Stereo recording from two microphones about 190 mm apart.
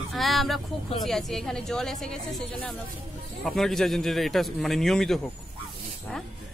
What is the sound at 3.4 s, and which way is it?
Speech, centre (ahead or behind).